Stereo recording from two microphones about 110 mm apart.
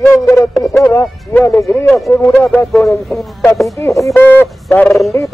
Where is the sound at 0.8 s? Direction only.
25° left (ahead or behind).